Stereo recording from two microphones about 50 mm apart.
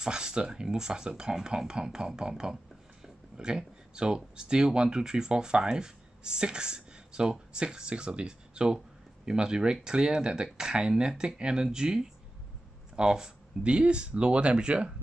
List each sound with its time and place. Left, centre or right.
0.0 s speech: centre